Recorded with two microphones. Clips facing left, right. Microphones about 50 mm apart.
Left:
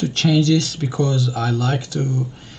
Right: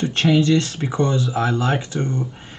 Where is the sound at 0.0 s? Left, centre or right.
Right.